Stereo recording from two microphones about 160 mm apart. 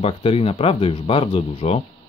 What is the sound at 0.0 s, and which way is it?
Speech, 35° left (ahead or behind).